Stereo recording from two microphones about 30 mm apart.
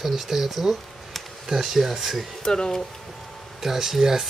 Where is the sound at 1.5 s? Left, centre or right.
Centre.